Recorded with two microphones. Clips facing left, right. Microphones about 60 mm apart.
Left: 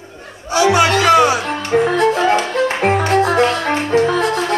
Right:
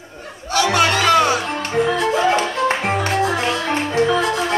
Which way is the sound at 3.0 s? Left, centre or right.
Left.